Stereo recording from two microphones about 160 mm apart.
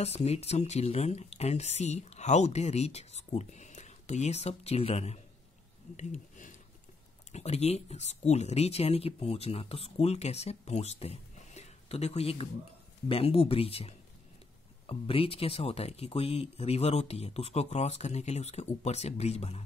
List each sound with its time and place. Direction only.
0.0 s speech: 40° left (ahead or behind)
5.9 s a sound: 50° left (ahead or behind)
7.3 s speech: 40° left (ahead or behind)